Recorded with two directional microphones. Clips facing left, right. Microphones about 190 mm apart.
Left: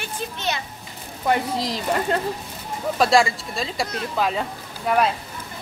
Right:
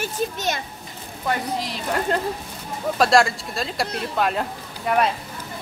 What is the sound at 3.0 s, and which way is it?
Speech, centre (ahead or behind).